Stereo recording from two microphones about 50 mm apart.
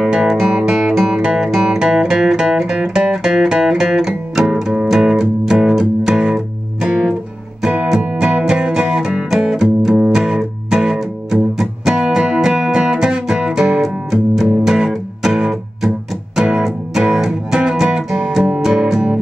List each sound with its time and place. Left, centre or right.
0.1 s music: centre